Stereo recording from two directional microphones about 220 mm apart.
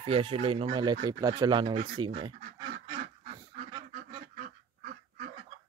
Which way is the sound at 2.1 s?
25° right (ahead or behind).